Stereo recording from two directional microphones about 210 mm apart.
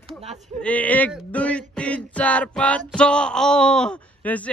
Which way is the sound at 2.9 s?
5° left (ahead or behind).